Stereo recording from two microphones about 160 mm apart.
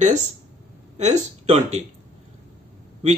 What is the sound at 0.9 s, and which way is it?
Speech, 45° right (ahead or behind).